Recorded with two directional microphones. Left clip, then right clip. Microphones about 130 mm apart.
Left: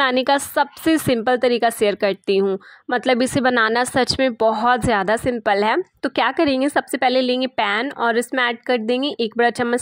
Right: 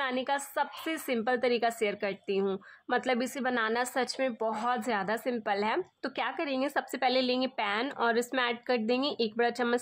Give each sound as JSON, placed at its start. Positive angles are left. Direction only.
{"t": 0.0, "sound": "a woman's voice", "side_deg": 90}